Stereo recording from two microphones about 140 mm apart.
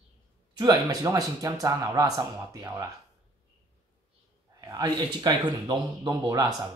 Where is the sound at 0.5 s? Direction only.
30° right (ahead or behind).